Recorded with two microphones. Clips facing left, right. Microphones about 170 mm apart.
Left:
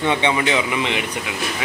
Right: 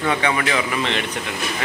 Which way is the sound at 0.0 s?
25° left (ahead or behind).